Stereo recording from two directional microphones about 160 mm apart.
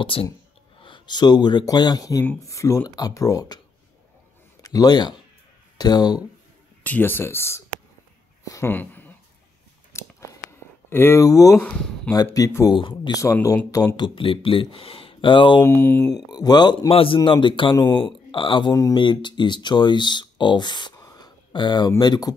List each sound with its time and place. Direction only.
0.0 s a man's voice: 35° left (ahead or behind)
6.8 s speech: 10° left (ahead or behind)
9.9 s scissors: 15° left (ahead or behind)
10.9 s speech: 15° left (ahead or behind); by 15.6 s 30° left (ahead or behind)
15.6 s speech: 15° left (ahead or behind)
16.3 s a man's voice: 25° left (ahead or behind)
17.7 s speech: 15° left (ahead or behind)
18.0 s speech: 30° left (ahead or behind)